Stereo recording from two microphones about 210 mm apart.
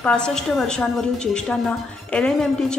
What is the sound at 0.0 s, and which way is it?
A woman's voice, 5° left (ahead or behind).